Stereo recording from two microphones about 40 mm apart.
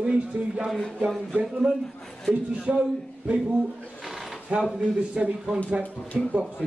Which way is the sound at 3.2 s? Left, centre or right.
Centre.